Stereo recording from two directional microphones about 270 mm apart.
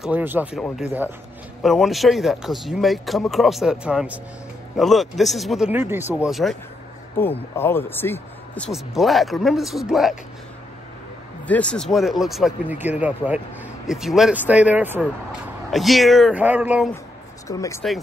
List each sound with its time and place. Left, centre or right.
0.0 s speech: centre
11.4 s speech: centre
17.5 s speech: centre